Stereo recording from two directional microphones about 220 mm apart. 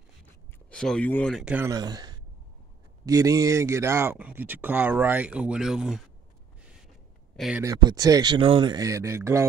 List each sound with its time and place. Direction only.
0.7 s speech: 5° left (ahead or behind)
7.3 s speech: centre (ahead or behind)
7.6 s speech: 15° right (ahead or behind)